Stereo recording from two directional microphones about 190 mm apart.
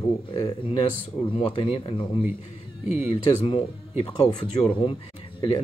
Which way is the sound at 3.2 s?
35° left (ahead or behind).